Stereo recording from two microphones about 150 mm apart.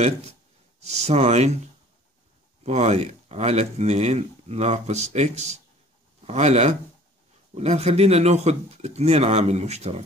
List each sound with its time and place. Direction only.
0.0 s speech: 45° right (ahead or behind)
2.6 s speech: 50° right (ahead or behind)